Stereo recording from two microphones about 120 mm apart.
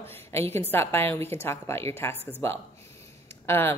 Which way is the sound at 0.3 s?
20° left (ahead or behind).